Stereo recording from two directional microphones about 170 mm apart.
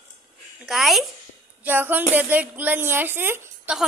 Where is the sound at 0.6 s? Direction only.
Centre (ahead or behind).